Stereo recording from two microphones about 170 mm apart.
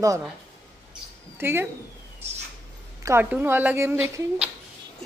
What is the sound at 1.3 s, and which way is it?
Speech, 15° right (ahead or behind).